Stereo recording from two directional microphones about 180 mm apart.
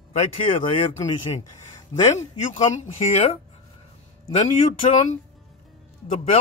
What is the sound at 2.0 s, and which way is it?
Speech, 40° left (ahead or behind).